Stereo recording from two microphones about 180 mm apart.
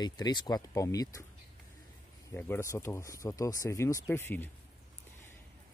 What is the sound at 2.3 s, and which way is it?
Speech, 15° left (ahead or behind).